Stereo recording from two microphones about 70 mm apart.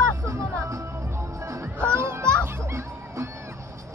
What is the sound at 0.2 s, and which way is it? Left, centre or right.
Music, right.